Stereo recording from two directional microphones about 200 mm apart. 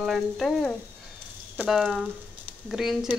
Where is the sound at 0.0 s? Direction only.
Centre (ahead or behind).